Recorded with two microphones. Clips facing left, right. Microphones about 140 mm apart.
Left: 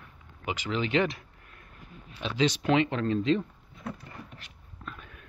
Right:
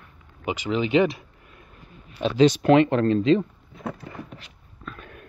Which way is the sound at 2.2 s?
45° right (ahead or behind).